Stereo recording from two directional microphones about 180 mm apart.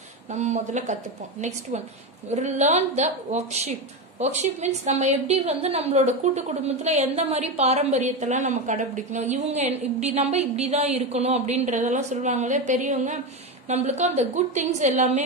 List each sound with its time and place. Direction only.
0.3 s a woman's voice: 40° right (ahead or behind)